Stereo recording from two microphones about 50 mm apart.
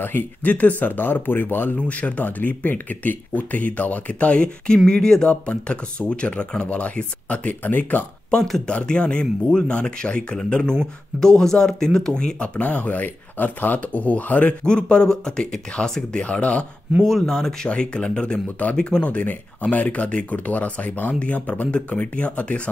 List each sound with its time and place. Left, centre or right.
0.0 s speech: left
0.5 s speech: left
1.8 s speech: left
8.6 s speech: centre
12.5 s speech: left
14.6 s speech: centre
17.0 s speech: centre
17.6 s speech: left